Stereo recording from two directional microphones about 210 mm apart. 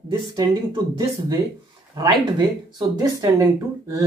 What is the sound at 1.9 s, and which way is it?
Speech, 20° right (ahead or behind).